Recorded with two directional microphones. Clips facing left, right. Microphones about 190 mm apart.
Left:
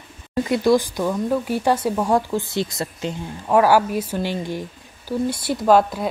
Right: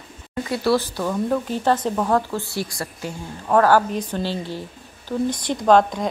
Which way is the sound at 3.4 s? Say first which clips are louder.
Left 1 dB; 10° left (ahead or behind).